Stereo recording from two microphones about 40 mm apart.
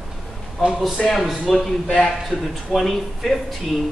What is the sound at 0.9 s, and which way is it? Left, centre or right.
Speech, centre.